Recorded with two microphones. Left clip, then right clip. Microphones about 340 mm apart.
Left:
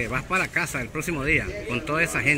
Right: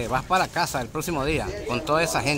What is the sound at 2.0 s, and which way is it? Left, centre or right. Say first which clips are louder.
Speech: left 1 dB; right.